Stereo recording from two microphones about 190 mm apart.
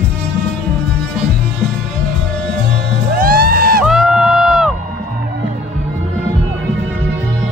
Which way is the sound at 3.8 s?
5° right (ahead or behind).